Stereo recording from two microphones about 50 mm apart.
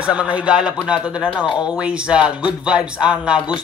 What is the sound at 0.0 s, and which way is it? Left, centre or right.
Speech, right.